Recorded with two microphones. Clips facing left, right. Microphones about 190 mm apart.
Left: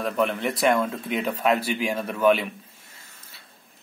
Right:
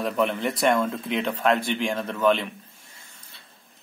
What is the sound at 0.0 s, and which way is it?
Speech, centre (ahead or behind).